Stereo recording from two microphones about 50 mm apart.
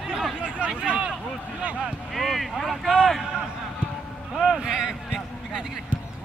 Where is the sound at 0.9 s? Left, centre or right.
Right.